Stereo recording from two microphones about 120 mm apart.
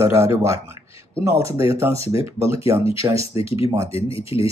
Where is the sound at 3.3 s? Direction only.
50° left (ahead or behind).